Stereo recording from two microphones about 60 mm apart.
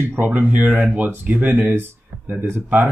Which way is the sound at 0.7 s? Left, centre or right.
Centre.